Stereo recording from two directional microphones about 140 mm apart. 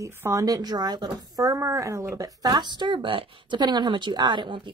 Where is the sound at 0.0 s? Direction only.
20° right (ahead or behind).